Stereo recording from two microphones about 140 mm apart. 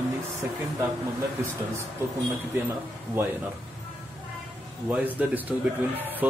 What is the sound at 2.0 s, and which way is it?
Speech, 20° right (ahead or behind).